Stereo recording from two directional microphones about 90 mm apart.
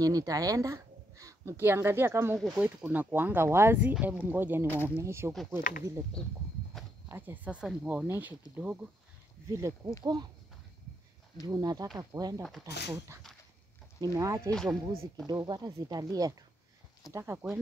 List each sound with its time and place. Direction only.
0.0 s a sound: 40° right (ahead or behind)
1.6 s speech: 25° right (ahead or behind)
2.3 s speech: 5° right (ahead or behind)
2.6 s speech: 20° right (ahead or behind)
3.8 s speech: 15° right (ahead or behind)
7.1 s speech: 20° right (ahead or behind)
9.5 s speech: 35° right (ahead or behind)
11.4 s speech: 45° right (ahead or behind)
14.0 s speech: 40° right (ahead or behind)
14.5 s speech: 5° left (ahead or behind)
15.2 s speech: 50° right (ahead or behind)
17.1 s speech: 25° right (ahead or behind)